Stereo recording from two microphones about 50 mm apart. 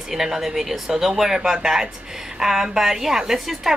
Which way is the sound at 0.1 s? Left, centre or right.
Centre.